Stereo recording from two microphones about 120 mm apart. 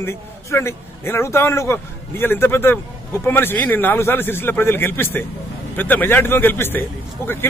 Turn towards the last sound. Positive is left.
turn(degrees=15)  # may be behind; listen again after turning